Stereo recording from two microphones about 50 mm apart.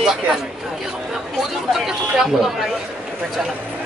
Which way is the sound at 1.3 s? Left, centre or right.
Centre.